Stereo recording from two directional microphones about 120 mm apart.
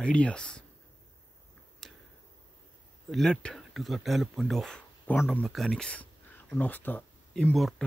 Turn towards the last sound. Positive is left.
turn(degrees=5)  # may be behind; listen again after turning